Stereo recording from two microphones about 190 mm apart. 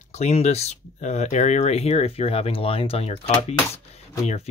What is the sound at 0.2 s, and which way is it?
Speech, 35° left (ahead or behind).